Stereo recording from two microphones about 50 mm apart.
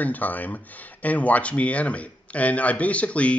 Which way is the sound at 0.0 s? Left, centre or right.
Left.